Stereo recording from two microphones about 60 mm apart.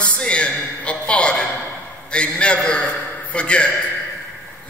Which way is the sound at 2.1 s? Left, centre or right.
Centre.